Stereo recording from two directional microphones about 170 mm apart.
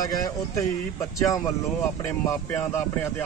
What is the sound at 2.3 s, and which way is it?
Speech, 15° left (ahead or behind).